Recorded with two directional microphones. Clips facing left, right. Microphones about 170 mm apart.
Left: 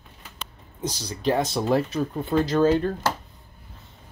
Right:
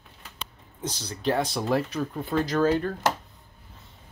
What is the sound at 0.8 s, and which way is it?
Speech, 10° left (ahead or behind).